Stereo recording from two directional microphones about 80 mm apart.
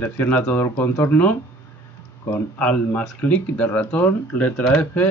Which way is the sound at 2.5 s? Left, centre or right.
Centre.